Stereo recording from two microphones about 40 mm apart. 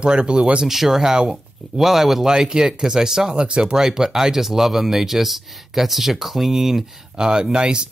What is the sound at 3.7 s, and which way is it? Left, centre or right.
Speech, centre.